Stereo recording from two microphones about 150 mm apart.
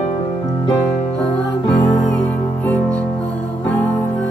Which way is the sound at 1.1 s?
5° left (ahead or behind).